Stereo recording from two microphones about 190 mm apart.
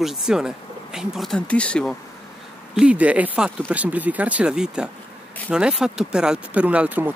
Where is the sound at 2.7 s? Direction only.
5° right (ahead or behind).